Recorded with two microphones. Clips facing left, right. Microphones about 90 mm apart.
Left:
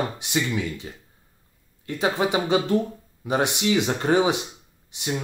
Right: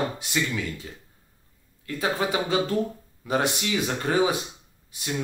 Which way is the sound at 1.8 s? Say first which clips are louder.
Left 3 dB; 20° left (ahead or behind).